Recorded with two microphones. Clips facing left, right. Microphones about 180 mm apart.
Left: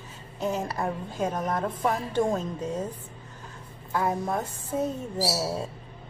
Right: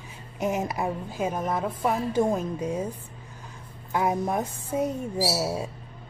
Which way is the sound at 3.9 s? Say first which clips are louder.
Right 2 dB; 15° right (ahead or behind).